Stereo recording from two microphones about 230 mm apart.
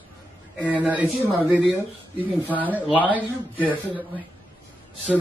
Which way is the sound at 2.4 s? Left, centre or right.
Centre.